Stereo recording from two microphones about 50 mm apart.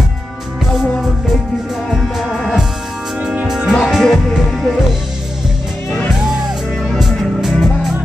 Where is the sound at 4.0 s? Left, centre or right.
Centre.